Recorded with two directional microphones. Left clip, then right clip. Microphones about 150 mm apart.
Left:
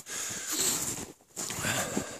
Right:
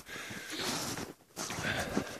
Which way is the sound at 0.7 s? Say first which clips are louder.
Left 3 dB; centre (ahead or behind).